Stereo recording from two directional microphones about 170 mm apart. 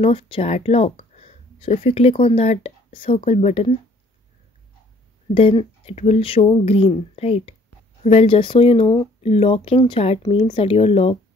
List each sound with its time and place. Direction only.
0.0 s speech: 35° left (ahead or behind)
5.3 s speech: 35° left (ahead or behind)